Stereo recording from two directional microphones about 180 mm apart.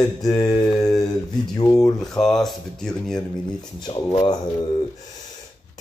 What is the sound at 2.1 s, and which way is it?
Speech, centre (ahead or behind).